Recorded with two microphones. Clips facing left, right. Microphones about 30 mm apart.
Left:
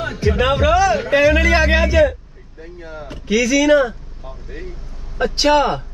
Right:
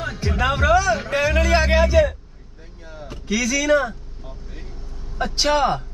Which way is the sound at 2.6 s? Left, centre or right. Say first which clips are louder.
Left 7 dB; left.